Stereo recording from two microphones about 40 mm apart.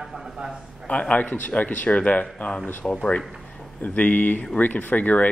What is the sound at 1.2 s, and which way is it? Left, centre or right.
Speech, left.